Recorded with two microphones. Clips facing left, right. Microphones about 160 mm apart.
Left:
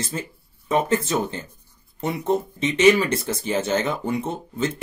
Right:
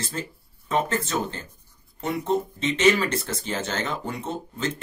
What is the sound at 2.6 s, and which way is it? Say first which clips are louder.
Speech: left 5 dB; 10° left (ahead or behind).